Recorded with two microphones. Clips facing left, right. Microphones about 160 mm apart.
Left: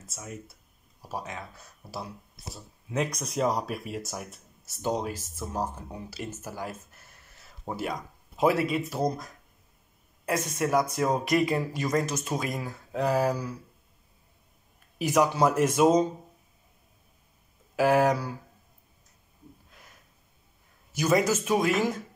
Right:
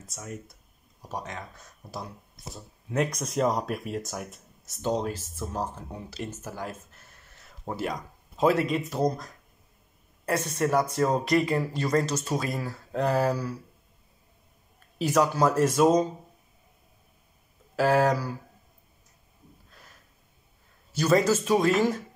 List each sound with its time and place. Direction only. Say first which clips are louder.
0.0 s speech: right 2 dB; 5° left (ahead or behind)
10.6 s speech: right 1 dB; 15° left (ahead or behind)
15.0 s speech: even; 15° left (ahead or behind)
17.7 s speech: even; 15° left (ahead or behind)
20.9 s speech: right 2 dB; 15° left (ahead or behind)